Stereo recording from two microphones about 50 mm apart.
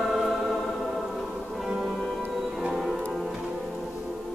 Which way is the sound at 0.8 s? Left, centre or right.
Centre.